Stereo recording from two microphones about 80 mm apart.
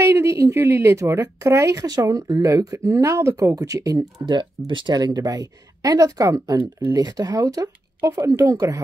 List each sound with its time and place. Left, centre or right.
0.0 s speech: right
2.5 s speech: right
4.6 s speech: right
8.0 s speech: right
8.4 s speech: right